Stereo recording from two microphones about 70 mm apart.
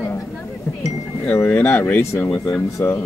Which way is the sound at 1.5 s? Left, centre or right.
Left.